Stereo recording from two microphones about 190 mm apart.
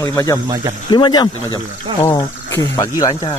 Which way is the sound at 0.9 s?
25° left (ahead or behind).